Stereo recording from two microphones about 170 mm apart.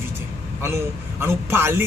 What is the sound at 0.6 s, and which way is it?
A man's voice, 15° right (ahead or behind).